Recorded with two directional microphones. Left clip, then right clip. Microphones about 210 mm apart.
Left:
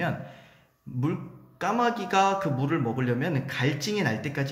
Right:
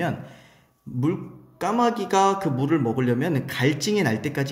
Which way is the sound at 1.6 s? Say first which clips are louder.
Right 3 dB; 20° right (ahead or behind).